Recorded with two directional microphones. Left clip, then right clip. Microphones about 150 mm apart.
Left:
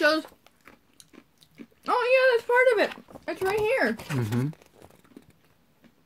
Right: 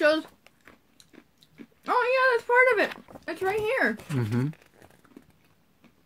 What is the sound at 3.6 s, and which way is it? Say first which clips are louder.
Speech: left 1 dB; 20° left (ahead or behind).